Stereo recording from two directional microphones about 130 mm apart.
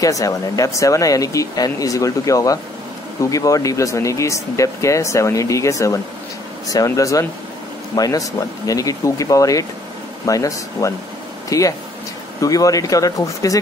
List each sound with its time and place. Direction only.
0.0 s speech: 25° left (ahead or behind)